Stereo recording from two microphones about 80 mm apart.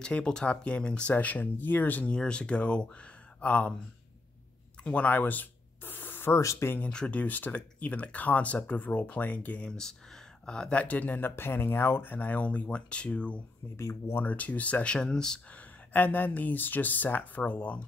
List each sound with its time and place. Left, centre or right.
0.0 s speech: centre
4.8 s speech: centre
6.4 s speech: left
6.9 s speech: centre
13.7 s speech: left
14.2 s speech: centre
15.9 s speech: left